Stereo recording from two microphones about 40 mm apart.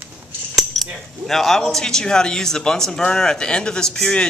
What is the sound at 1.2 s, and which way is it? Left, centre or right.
A man's voice, centre.